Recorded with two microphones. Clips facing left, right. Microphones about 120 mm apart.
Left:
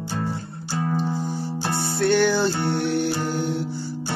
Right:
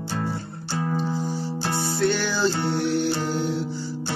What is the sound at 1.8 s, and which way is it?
Music, 60° left (ahead or behind).